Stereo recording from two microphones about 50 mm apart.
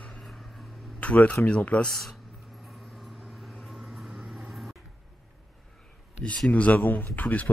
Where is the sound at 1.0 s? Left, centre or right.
Left.